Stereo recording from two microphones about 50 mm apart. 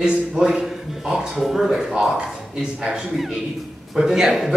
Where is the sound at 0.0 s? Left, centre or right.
Centre.